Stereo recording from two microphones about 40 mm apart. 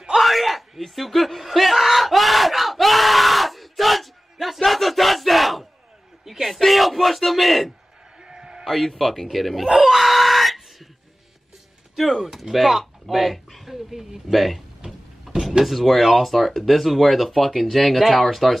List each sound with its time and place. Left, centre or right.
0.1 s a sound: centre
4.6 s battle cry: centre
6.2 s a sound: centre
8.2 s a sound: centre
8.6 s speech: centre
9.8 s screaming: centre
11.9 s speech: centre
15.3 s power windows: centre
15.6 s speech: centre